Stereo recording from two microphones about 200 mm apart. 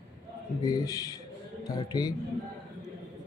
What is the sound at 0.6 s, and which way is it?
A man's voice, 20° left (ahead or behind).